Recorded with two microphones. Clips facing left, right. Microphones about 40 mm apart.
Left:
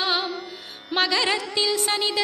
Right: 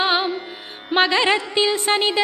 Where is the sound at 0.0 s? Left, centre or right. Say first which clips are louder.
Right 5 dB; right.